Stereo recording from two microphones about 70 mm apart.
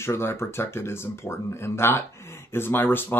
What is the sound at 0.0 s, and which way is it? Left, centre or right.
Speech, left.